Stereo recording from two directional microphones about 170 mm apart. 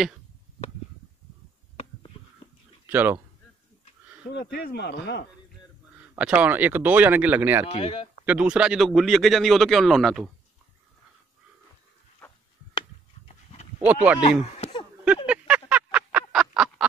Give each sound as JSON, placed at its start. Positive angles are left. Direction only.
{"t": 2.9, "sound": "speech", "side_deg": -10}
{"t": 4.3, "sound": "speech", "side_deg": 80}
{"t": 5.9, "sound": "speech", "side_deg": -5}
{"t": 7.6, "sound": "speech", "side_deg": 40}
{"t": 8.3, "sound": "speech", "side_deg": -5}
{"t": 12.2, "sound": "a sound", "side_deg": 10}
{"t": 13.7, "sound": "speech", "side_deg": -10}
{"t": 14.6, "sound": "a sound", "side_deg": 25}
{"t": 15.2, "sound": "a sound", "side_deg": -5}